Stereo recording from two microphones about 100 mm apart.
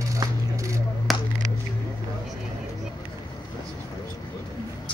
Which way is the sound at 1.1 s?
Centre (ahead or behind).